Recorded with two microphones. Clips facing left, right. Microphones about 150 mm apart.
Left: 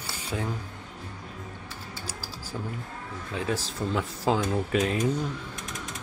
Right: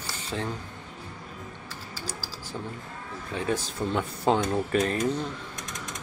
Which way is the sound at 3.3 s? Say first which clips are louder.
Right 1 dB; centre (ahead or behind).